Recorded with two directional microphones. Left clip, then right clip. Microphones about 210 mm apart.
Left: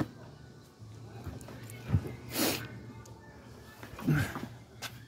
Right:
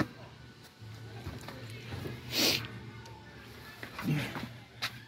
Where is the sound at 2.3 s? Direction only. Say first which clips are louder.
Right 4 dB; 5° left (ahead or behind).